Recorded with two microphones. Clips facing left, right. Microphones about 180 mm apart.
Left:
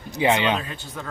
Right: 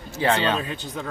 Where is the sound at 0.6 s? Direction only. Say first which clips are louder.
Right 4 dB; 20° right (ahead or behind).